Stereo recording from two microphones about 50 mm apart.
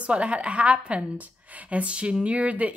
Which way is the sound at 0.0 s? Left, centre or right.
Right.